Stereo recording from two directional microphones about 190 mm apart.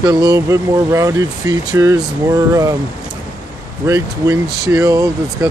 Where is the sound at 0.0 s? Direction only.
20° right (ahead or behind).